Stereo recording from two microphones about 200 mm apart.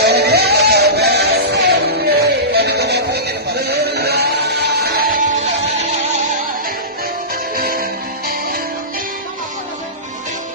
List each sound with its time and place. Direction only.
0.0 s music: 55° right (ahead or behind)
7.5 s music: 45° right (ahead or behind)